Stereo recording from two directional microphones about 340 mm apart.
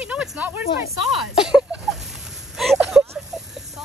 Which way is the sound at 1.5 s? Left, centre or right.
Centre.